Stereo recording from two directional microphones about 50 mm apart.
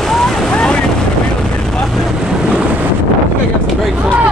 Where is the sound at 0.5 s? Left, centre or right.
Centre.